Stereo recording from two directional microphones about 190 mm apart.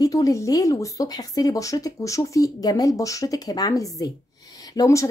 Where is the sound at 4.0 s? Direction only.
20° left (ahead or behind).